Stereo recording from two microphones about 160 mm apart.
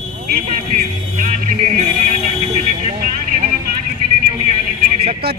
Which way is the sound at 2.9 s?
50° right (ahead or behind).